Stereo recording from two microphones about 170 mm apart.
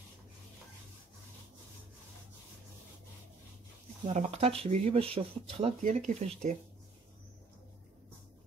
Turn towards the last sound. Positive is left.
turn(degrees=-45)  # may be behind; listen again after turning